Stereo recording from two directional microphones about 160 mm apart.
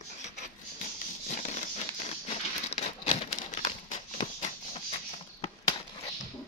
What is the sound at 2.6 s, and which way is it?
Crumpling, 45° left (ahead or behind).